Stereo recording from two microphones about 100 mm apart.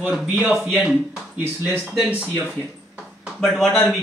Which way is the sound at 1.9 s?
10° right (ahead or behind).